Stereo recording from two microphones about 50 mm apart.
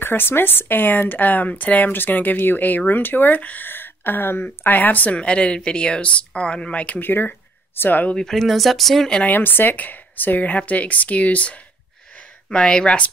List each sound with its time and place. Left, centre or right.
0.0 s a woman's voice: left
5.2 s speech: left
7.0 s speech: left
8.3 s speech: centre
9.2 s a woman's voice: left
12.4 s speech: centre